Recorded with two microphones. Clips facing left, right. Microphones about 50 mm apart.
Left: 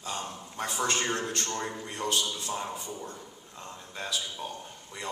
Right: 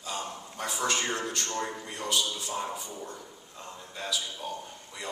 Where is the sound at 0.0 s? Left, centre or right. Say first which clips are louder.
Even; left.